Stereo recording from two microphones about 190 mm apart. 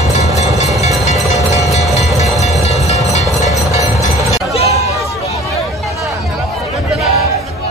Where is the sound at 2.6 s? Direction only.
35° left (ahead or behind).